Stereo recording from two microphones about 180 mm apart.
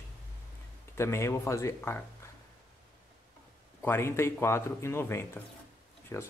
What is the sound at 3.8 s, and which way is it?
Speech, 15° left (ahead or behind).